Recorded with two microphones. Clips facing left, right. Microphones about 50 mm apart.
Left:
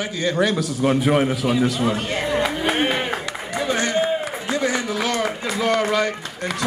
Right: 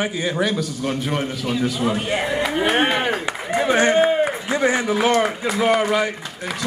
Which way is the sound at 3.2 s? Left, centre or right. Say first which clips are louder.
Right 4 dB; right.